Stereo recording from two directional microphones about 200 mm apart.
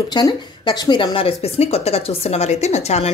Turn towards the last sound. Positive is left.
turn(degrees=30)  # may be behind; listen again after turning